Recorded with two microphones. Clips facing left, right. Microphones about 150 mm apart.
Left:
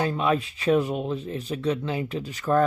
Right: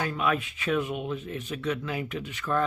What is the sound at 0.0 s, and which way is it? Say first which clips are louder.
Speech: left 4 dB; 30° left (ahead or behind).